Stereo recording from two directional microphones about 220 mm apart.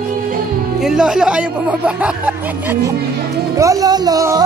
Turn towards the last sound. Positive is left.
turn(degrees=-15)  # may be behind; listen again after turning